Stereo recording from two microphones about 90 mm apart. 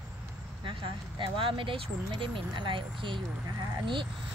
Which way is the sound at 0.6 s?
75° right (ahead or behind).